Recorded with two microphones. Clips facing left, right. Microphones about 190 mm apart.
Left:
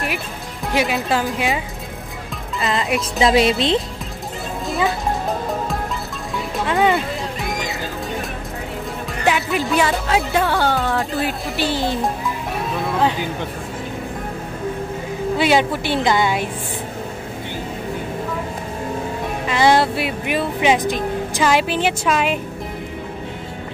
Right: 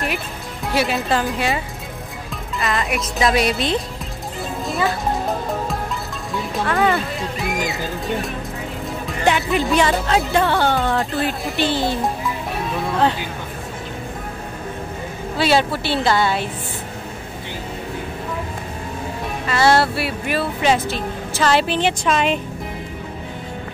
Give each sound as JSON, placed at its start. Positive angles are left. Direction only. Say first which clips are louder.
{"t": 0.9, "sound": "speech", "louder": "even", "side_deg": 0}
{"t": 2.6, "sound": "speech", "louder": "left 2 dB", "side_deg": 25}
{"t": 4.6, "sound": "music", "louder": "left 1 dB", "side_deg": 0}
{"t": 6.6, "sound": "speech", "louder": "left 1 dB", "side_deg": 20}
{"t": 9.2, "sound": "speech", "louder": "right 1 dB", "side_deg": 0}
{"t": 15.3, "sound": "speech", "louder": "even", "side_deg": 15}
{"t": 19.4, "sound": "speech", "louder": "left 1 dB", "side_deg": 15}